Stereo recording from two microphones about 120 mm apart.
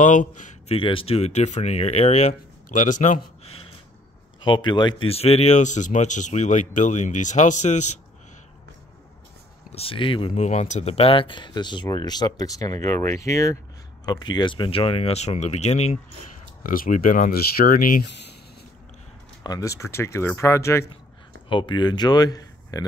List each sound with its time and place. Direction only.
0.0 s a man's voice: 90° left
0.7 s speech: 45° left (ahead or behind); by 3.5 s 90° left
4.4 s speech: 40° left (ahead or behind)
5.0 s speech: 55° left (ahead or behind); by 7.8 s 85° left
9.7 s speech: 55° left (ahead or behind)
10.3 s speech: 70° left (ahead or behind); by 13.6 s 25° left (ahead or behind)
14.0 s speech: 35° left (ahead or behind); by 16.0 s 70° left (ahead or behind)
16.9 s speech: 90° left
19.4 s speech: 30° left (ahead or behind)
21.5 s speech: 40° left (ahead or behind)